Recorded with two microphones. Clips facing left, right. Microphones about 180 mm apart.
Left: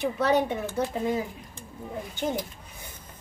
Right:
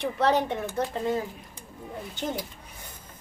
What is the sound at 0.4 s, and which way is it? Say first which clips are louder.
Speech: left 1 dB; 5° left (ahead or behind).